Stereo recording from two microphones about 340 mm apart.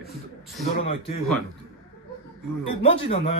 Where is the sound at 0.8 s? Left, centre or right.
Centre.